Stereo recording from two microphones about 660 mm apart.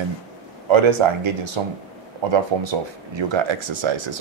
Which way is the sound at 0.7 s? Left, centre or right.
Right.